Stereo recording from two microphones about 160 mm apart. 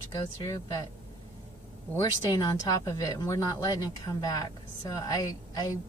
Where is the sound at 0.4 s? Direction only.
20° left (ahead or behind).